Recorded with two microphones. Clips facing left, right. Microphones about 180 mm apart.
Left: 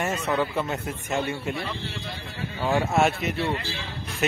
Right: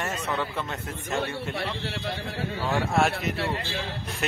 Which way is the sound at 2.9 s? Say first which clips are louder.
Left 2 dB; centre (ahead or behind).